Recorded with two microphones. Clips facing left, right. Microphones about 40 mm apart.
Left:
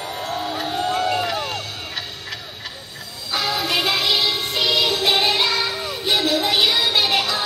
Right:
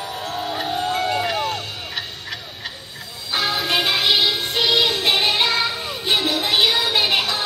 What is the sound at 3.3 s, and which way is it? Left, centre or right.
Music, right.